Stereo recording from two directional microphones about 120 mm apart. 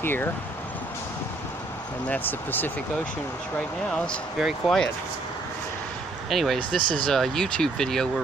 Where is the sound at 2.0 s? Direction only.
15° left (ahead or behind).